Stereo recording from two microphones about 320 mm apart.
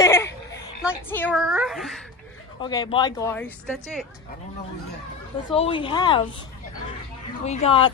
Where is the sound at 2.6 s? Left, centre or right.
Centre.